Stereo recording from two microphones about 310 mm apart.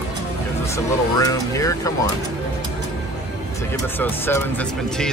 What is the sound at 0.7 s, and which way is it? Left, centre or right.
Speech, centre.